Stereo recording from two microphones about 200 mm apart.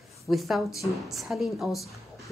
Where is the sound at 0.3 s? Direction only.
Centre (ahead or behind).